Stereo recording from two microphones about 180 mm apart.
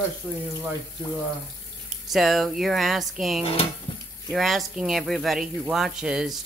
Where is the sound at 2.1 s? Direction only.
Centre (ahead or behind).